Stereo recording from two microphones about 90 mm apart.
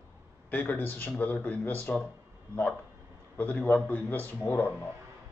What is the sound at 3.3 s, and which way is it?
A man's voice, 15° left (ahead or behind).